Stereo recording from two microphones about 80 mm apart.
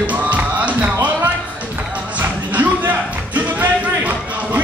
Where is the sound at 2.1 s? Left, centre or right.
Centre.